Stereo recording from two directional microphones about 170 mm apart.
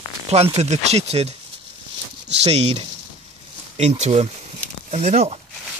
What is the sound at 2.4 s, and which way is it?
Speech, 35° right (ahead or behind).